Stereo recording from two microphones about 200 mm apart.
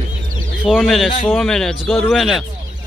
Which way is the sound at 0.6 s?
Centre (ahead or behind).